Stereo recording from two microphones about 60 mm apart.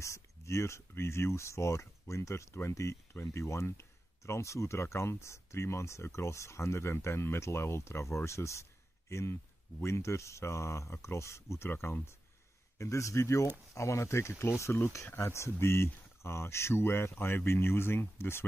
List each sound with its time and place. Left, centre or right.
0.0 s speech: left
12.7 s a man's voice: left